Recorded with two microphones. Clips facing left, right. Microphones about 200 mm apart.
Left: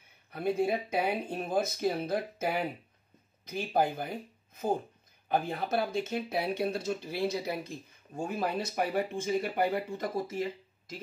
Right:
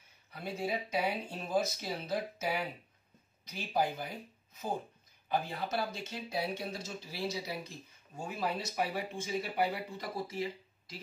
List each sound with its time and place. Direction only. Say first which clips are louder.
0.3 s speech: left 8 dB; 55° left (ahead or behind)
5.3 s speech: left 4 dB; 55° left (ahead or behind)